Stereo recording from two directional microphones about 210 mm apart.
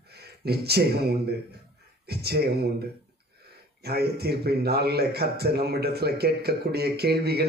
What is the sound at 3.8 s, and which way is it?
Speech, 50° right (ahead or behind).